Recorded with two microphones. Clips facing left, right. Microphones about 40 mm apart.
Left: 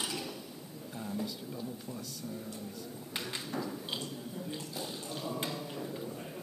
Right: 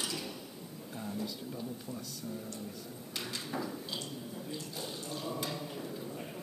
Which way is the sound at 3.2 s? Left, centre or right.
Centre.